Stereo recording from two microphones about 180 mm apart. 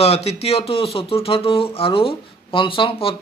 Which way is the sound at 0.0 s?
35° left (ahead or behind).